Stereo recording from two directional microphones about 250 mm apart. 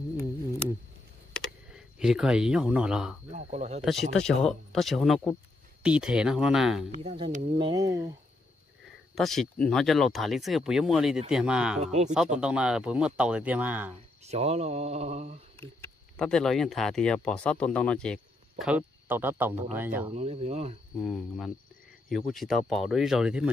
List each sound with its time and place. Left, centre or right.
1.7 s speech: centre
3.3 s speech: right
4.1 s speech: centre
6.9 s speech: right
7.5 s speech: centre
9.1 s speech: centre
11.8 s speech: right
12.1 s speech: centre
14.2 s speech: right
15.8 s speech: centre
20.1 s speech: right
21.0 s speech: centre